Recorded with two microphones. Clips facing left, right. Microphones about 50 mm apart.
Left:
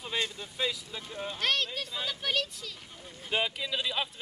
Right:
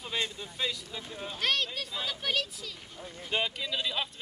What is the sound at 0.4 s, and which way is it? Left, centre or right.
Speech, centre.